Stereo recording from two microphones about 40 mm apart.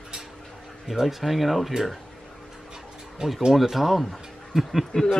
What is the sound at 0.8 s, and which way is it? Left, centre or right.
Speech, centre.